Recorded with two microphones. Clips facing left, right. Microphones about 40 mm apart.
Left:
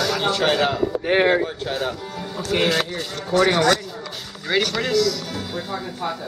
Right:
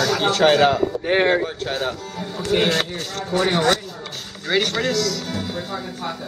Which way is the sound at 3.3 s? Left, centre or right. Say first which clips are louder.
Left 2 dB; centre.